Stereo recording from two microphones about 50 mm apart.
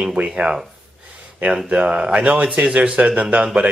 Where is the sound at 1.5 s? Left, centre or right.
Right.